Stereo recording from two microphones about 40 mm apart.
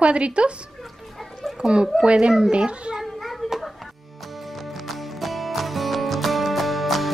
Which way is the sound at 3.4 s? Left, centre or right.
Centre.